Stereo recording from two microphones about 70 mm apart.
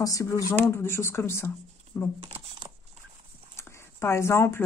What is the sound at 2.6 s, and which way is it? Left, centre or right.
Patter, right.